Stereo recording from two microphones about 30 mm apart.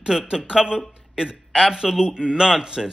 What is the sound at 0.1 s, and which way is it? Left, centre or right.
A man's voice, centre.